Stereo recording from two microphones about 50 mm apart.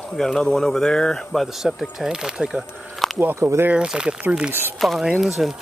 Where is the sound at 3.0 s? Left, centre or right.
Centre.